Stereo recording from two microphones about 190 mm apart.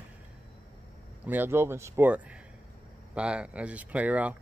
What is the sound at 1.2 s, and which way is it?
Speech, 10° right (ahead or behind).